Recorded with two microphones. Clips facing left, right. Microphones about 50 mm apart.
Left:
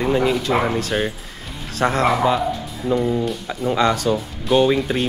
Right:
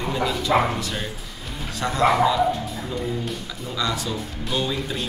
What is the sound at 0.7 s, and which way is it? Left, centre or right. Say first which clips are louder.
Speech: left 7 dB; left.